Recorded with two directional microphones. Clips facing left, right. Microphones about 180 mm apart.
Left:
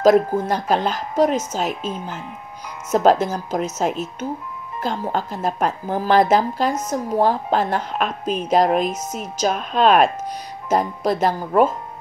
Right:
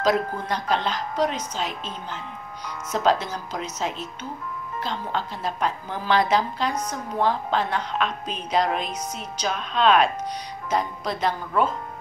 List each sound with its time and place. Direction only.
0.0 s a woman's voice: 45° left (ahead or behind)
1.8 s speech: 10° left (ahead or behind)
2.9 s a woman's voice: 50° left (ahead or behind)